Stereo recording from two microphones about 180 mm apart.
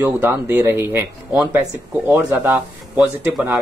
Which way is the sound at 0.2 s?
10° right (ahead or behind).